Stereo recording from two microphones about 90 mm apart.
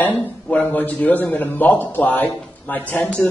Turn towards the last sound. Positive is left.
turn(degrees=20)  # may be behind; listen again after turning